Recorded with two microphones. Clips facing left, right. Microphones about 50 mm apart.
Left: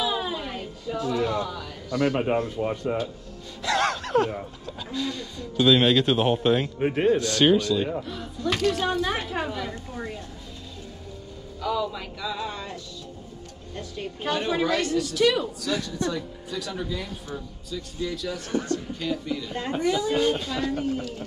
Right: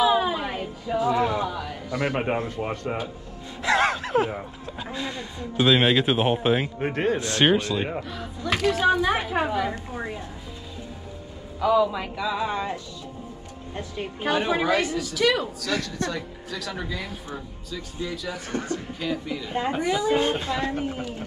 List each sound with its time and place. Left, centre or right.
0.0 s music: centre
2.1 s speech: right
3.6 s speech: centre
7.2 s speech: right
8.0 s speech: centre
11.6 s speech: centre
13.7 s speech: centre
15.7 s a woman's voice: right
16.9 s speech: centre
17.7 s speech: centre
20.2 s speech: right